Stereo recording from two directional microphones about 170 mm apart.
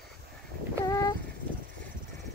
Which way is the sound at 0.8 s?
20° left (ahead or behind).